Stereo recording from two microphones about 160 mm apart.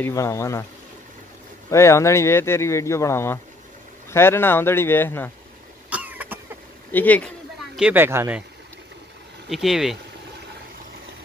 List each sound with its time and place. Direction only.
0.0 s speech: 20° left (ahead or behind)
1.7 s speech: 15° left (ahead or behind)
5.9 s cough: 10° right (ahead or behind)
6.9 s speech: 10° left (ahead or behind)
7.7 s speech: 10° right (ahead or behind)
9.5 s speech: centre (ahead or behind)